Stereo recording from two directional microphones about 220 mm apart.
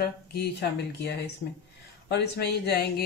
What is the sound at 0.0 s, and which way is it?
Speech, 45° left (ahead or behind).